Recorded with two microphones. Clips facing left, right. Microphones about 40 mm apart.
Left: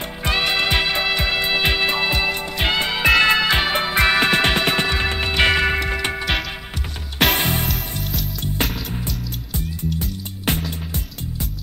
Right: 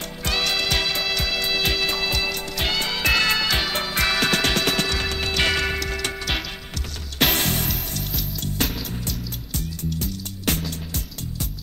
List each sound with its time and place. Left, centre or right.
0.2 s music: left
7.3 s music: centre
8.0 s music: centre
9.5 s music: left